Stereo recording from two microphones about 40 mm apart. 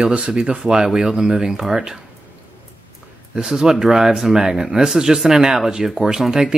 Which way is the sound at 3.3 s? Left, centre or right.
Centre.